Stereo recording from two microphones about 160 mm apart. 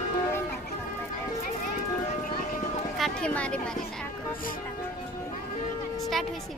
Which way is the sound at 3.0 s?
5° left (ahead or behind).